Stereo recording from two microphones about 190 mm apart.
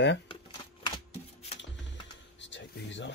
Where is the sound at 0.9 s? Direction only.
30° left (ahead or behind).